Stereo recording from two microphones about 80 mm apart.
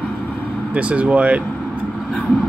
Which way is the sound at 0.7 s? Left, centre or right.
Centre.